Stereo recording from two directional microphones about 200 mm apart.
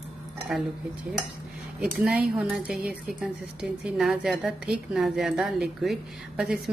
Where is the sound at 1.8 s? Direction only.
5° right (ahead or behind).